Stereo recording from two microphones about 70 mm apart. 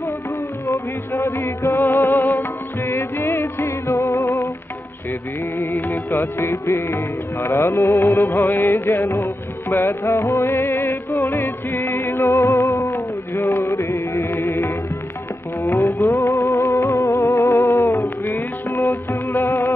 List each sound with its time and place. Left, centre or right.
0.7 s music: left
5.6 s music: left
7.7 s music: left
8.3 s music: left
12.3 s music: left
13.3 s music: left
15.8 s music: left
18.2 s music: left